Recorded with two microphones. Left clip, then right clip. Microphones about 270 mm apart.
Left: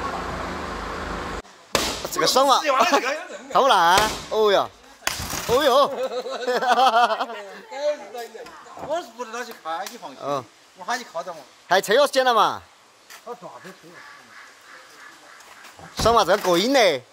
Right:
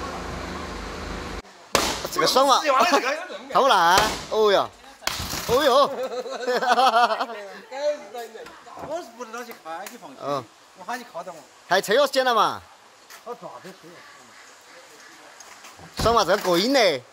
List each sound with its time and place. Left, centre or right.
0.0 s vehicle: centre
0.9 s vehicle: left
1.2 s speech: centre
16.0 s speech: centre